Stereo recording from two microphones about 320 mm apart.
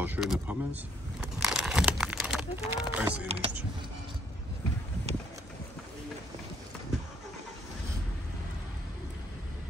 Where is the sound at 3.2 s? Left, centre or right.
Centre.